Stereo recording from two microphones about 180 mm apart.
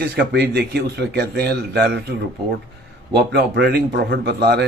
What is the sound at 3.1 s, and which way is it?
Speech, 65° right (ahead or behind).